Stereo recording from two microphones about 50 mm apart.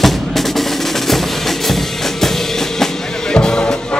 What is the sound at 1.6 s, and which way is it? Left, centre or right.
Music, centre.